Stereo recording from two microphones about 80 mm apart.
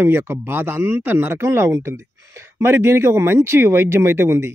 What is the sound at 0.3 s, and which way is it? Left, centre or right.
Speech, right.